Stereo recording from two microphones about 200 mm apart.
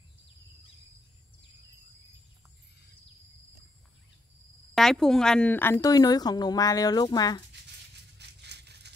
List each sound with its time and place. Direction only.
4.7 s speech: centre (ahead or behind); by 7.4 s 20° left (ahead or behind)
8.2 s rattle: 55° right (ahead or behind)